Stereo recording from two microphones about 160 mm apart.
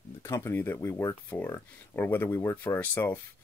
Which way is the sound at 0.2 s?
15° left (ahead or behind).